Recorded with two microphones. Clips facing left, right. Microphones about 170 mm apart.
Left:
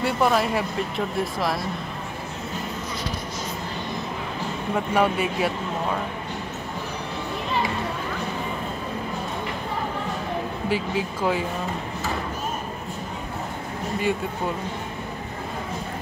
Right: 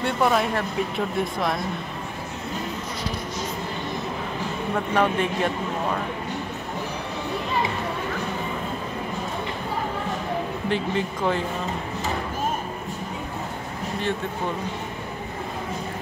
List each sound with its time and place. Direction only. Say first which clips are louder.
0.0 s speech: even; centre (ahead or behind)
4.7 s speech: even; 10° left (ahead or behind)
10.7 s speech: even; 5° left (ahead or behind)